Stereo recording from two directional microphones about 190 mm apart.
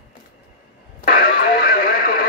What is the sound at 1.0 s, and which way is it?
Radio, 50° left (ahead or behind).